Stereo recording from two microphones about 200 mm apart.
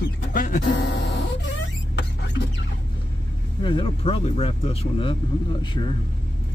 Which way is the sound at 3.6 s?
25° left (ahead or behind).